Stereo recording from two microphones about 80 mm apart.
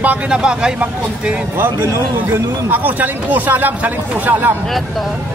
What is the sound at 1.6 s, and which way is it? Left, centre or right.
Speech, right.